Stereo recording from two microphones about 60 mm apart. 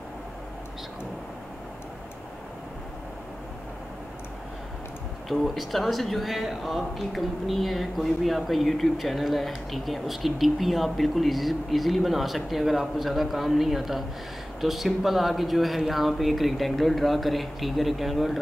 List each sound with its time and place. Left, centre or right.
5.3 s speech: centre